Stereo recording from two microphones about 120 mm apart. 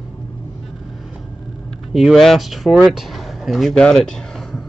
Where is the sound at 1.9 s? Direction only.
Centre (ahead or behind).